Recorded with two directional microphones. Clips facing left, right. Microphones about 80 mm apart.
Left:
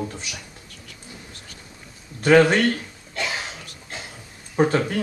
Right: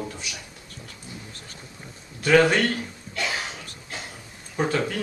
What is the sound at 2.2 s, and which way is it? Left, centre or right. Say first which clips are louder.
A man's voice: left 3 dB; left.